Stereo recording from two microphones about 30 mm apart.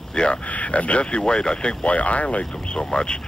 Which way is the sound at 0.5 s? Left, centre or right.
Left.